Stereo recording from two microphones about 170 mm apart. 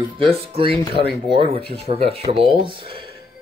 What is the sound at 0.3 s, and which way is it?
Speech, 35° right (ahead or behind).